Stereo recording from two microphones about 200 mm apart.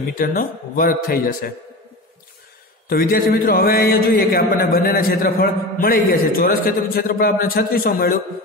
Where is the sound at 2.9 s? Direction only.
50° left (ahead or behind).